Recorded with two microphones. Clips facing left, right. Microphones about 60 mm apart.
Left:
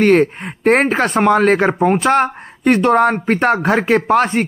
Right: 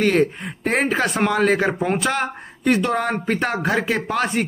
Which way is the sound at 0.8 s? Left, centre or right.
Left.